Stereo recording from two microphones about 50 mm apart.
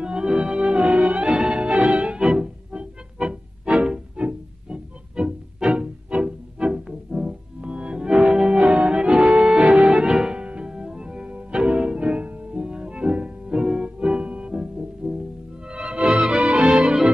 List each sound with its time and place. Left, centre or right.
0.0 s music: centre